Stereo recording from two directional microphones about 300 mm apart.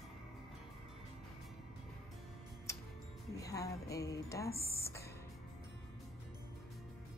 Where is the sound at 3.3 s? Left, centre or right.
Centre.